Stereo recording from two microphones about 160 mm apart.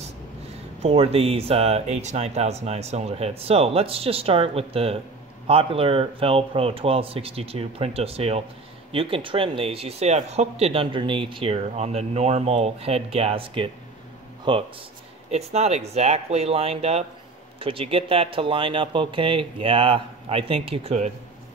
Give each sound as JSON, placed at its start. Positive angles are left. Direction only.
{"t": 0.8, "sound": "speech", "side_deg": -40}
{"t": 15.3, "sound": "speech", "side_deg": -40}